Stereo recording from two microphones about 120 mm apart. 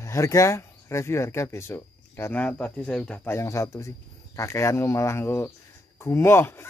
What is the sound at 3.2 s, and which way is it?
Speech, 25° left (ahead or behind).